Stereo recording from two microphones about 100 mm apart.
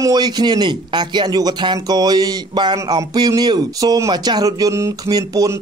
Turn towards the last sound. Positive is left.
turn(degrees=-35)  # may be behind; listen again after turning